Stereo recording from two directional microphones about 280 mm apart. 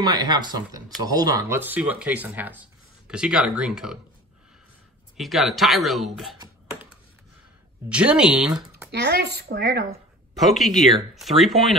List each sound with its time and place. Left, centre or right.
0.0 s speech: centre
5.1 s speech: centre
7.9 s speech: centre
8.9 s speech: right
10.3 s speech: centre